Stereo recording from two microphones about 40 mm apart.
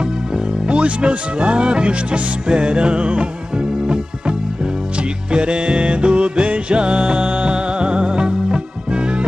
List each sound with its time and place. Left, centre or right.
0.7 s speech: right
5.3 s music: right